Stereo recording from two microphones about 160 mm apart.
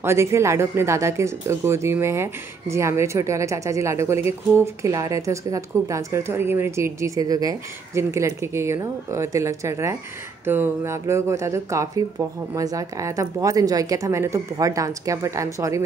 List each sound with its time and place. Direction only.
0.0 s speech: 15° right (ahead or behind)